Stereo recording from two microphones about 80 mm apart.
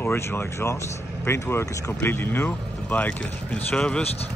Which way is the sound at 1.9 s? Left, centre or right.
Left.